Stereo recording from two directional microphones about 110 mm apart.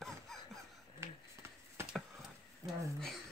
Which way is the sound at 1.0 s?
25° right (ahead or behind).